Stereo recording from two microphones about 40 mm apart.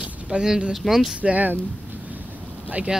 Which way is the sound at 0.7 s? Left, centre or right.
Centre.